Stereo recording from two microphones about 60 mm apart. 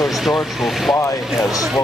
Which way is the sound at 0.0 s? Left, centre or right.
Centre.